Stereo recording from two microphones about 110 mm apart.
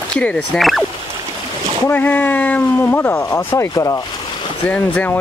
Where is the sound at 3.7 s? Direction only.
35° left (ahead or behind).